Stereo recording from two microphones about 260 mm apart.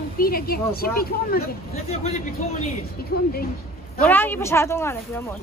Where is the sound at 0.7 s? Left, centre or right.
Left.